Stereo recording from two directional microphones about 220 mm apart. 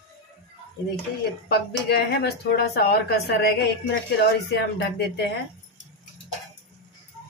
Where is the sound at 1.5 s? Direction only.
45° left (ahead or behind).